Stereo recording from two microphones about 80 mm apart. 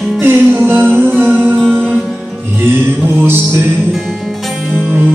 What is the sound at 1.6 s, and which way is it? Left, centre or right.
Music, centre.